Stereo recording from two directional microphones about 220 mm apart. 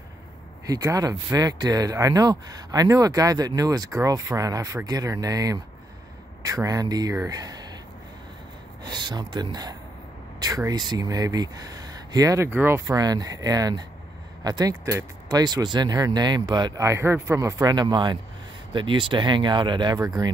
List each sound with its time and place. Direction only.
0.7 s speech: 15° right (ahead or behind)
8.9 s speech: 20° right (ahead or behind)